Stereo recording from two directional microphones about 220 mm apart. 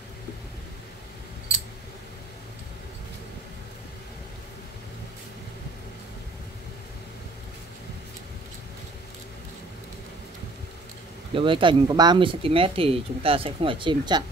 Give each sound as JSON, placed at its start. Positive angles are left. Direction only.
{"t": 11.3, "sound": "speech", "side_deg": -25}